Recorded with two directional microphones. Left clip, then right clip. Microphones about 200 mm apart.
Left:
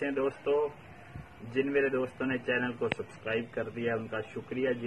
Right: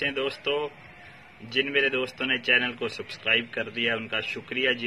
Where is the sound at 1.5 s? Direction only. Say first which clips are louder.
Right 5 dB; 30° right (ahead or behind).